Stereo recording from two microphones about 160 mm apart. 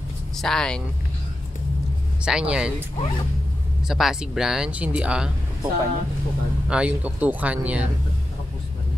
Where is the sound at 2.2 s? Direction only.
5° right (ahead or behind).